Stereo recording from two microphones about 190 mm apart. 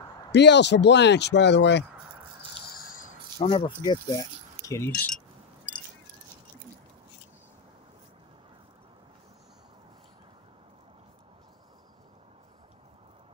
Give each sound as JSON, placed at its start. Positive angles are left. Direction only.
{"t": 0.3, "sound": "speech", "side_deg": 65}
{"t": 2.8, "sound": "a sound", "side_deg": 45}
{"t": 3.5, "sound": "speech", "side_deg": 25}